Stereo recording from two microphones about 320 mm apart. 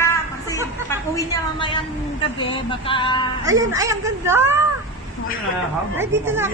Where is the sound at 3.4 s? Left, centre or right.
Centre.